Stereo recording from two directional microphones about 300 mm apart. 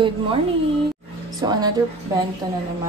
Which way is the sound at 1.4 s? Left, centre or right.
Centre.